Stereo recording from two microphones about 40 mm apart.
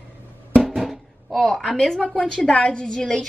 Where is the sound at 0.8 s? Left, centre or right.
Centre.